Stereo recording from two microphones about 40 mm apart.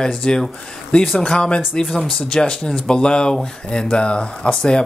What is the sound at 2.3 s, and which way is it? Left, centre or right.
Speech, left.